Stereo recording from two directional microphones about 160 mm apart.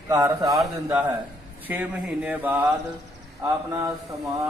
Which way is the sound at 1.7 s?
10° right (ahead or behind).